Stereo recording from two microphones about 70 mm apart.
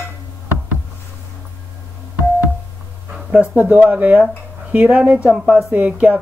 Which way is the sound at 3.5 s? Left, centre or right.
Right.